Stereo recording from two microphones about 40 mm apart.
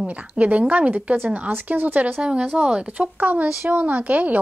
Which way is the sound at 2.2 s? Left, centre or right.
Right.